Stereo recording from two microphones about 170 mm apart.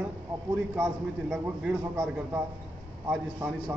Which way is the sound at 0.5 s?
5° right (ahead or behind).